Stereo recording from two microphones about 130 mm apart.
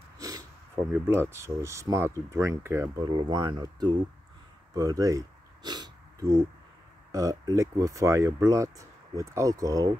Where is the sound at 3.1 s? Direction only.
35° right (ahead or behind).